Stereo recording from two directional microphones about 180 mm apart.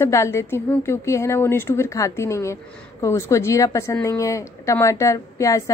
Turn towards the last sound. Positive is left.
turn(degrees=15)  # may be behind; listen again after turning